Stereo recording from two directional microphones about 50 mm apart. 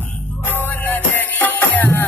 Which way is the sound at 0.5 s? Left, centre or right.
Left.